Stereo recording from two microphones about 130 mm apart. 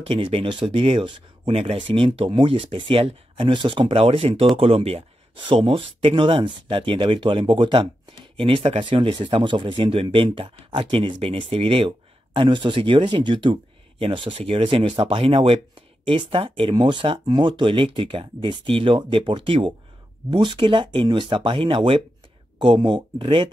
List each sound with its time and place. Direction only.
0.1 s speech: 40° right (ahead or behind)